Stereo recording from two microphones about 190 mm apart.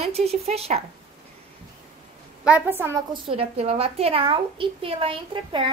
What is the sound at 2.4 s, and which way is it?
Speech, 10° right (ahead or behind).